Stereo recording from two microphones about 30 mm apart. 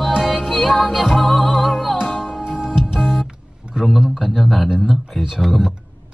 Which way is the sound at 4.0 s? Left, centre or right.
Centre.